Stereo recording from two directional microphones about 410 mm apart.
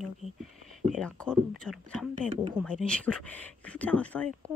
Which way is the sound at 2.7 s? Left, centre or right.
Centre.